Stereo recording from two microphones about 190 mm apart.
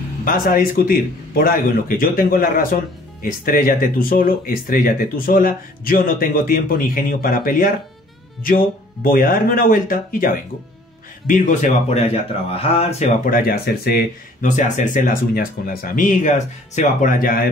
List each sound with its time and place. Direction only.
0.2 s a man's voice: 50° left (ahead or behind); by 13.1 s 30° left (ahead or behind)
13.2 s a man's voice: 50° left (ahead or behind)
14.4 s a man's voice: 40° left (ahead or behind)